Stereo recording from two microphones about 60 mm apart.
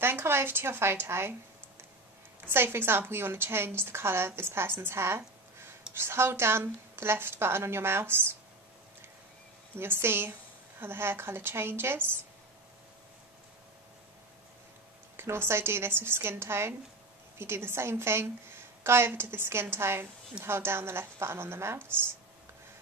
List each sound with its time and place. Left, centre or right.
0.0 s a woman's voice: right
2.5 s a woman's voice: right
9.8 s a woman's voice: right
15.1 s a woman's voice: right